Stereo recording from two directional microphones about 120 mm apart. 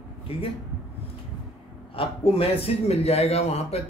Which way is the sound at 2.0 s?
50° left (ahead or behind).